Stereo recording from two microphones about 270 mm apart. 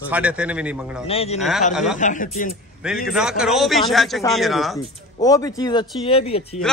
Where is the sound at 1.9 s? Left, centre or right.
Left.